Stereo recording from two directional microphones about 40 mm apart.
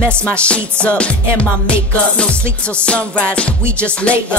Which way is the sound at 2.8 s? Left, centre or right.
Left.